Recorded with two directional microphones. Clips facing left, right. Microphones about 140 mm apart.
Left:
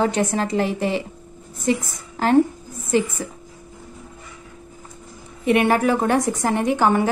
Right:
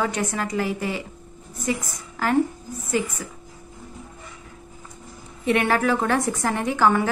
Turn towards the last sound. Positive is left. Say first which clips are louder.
# left 2 dB
turn(degrees=20)  # may be behind; listen again after turning